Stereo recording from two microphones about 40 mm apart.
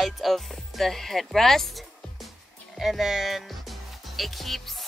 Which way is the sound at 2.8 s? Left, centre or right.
Centre.